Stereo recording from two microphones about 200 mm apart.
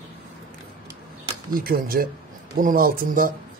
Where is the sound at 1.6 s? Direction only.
45° right (ahead or behind).